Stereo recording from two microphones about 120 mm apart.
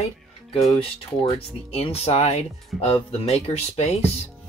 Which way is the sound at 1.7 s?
55° left (ahead or behind).